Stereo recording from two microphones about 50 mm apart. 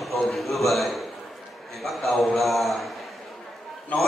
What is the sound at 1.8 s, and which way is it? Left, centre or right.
A man's voice, centre.